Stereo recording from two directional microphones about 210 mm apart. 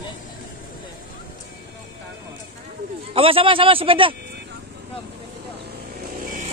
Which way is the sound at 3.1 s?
25° right (ahead or behind).